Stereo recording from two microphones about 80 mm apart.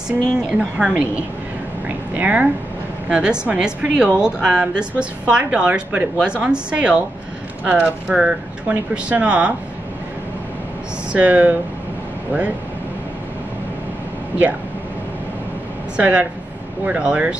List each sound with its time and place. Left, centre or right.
0.4 s speech: centre
2.1 s speech: centre
11.1 s speech: centre
16.0 s speech: centre